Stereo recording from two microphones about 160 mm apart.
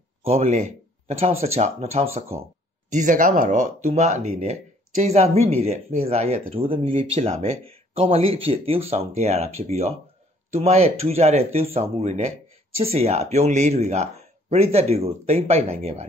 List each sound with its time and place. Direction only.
0.2 s speech: 40° right (ahead or behind)